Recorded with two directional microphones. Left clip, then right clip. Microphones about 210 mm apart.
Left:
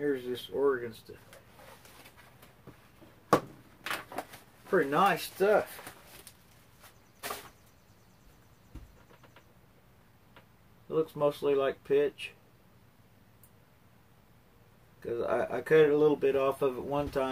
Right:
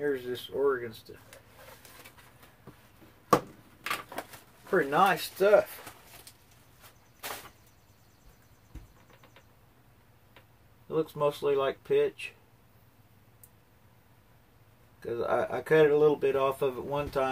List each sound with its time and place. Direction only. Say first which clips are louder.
0.0 s speech: right 1 dB; centre (ahead or behind)
4.6 s speech: right 2 dB; centre (ahead or behind)
10.9 s speech: even; 5° right (ahead or behind)
15.0 s speech: right 2 dB; 5° right (ahead or behind)